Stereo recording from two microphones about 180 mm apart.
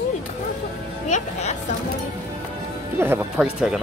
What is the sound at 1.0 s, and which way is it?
Speech, 40° left (ahead or behind).